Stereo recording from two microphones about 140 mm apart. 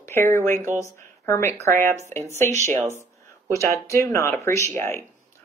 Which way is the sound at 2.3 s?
20° left (ahead or behind).